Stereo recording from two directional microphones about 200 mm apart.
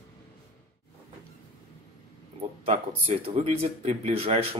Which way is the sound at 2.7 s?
30° right (ahead or behind).